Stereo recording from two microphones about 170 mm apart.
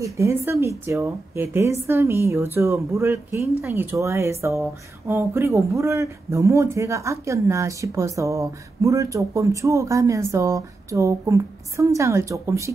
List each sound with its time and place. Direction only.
0.0 s speech: 15° right (ahead or behind)